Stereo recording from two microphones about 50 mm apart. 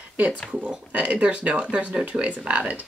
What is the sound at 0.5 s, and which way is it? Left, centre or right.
Speech, right.